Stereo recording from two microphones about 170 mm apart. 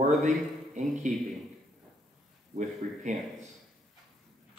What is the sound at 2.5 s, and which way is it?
Speech, 45° right (ahead or behind).